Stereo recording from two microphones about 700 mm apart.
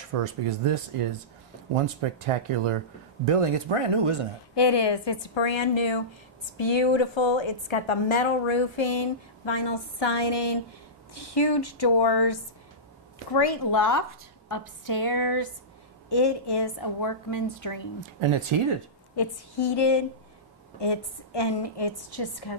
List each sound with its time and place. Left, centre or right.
0.1 s speech: right
4.6 s a woman's voice: left
18.2 s speech: right
19.1 s a woman's voice: left